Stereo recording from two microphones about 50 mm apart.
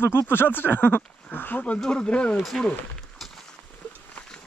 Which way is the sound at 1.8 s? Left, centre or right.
Centre.